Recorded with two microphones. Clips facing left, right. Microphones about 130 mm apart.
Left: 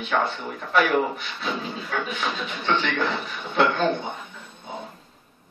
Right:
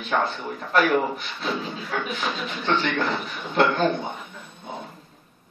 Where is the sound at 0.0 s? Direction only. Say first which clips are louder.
Even; centre (ahead or behind).